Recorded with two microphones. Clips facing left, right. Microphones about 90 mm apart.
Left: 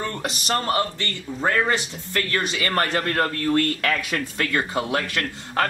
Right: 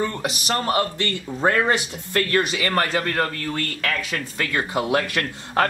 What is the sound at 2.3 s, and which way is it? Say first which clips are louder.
Speech: right 2 dB; 5° right (ahead or behind).